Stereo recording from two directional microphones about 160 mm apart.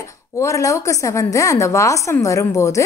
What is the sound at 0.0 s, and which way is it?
Speech, 20° left (ahead or behind).